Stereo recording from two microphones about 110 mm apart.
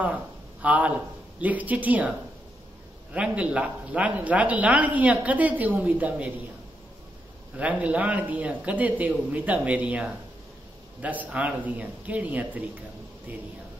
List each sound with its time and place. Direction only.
0.0 s speech: 15° right (ahead or behind)
7.5 s speech: 15° right (ahead or behind)